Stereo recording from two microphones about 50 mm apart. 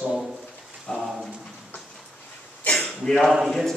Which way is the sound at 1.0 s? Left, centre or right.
Centre.